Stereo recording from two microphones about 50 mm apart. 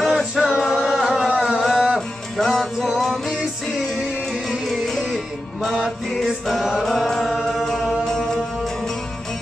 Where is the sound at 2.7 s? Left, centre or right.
Centre.